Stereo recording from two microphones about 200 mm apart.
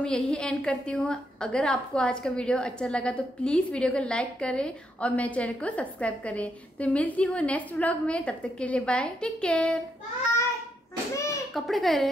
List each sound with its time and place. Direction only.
0.0 s a woman's voice: 5° left (ahead or behind)
11.1 s a sound: 15° left (ahead or behind)
11.5 s a woman's voice: centre (ahead or behind)